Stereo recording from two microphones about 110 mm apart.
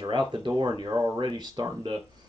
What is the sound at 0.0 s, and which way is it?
Speech, 45° right (ahead or behind).